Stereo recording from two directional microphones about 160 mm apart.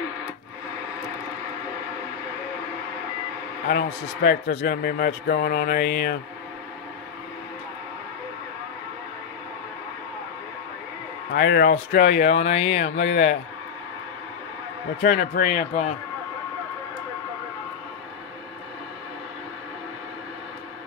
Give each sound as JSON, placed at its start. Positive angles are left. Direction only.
{"t": 3.6, "sound": "a man's voice", "side_deg": 70}
{"t": 11.3, "sound": "a man's voice", "side_deg": 75}
{"t": 12.2, "sound": "speech", "side_deg": 45}
{"t": 15.0, "sound": "speech", "side_deg": 60}